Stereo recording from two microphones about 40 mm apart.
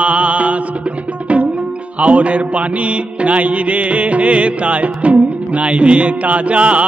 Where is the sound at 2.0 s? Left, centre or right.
Right.